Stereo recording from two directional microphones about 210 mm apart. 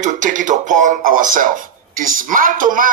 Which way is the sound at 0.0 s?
35° right (ahead or behind).